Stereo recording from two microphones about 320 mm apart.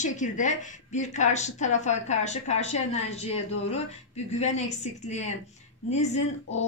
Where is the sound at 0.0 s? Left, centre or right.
Left.